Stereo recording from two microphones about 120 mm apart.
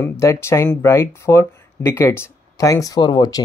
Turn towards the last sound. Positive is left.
turn(degrees=35)  # may be behind; listen again after turning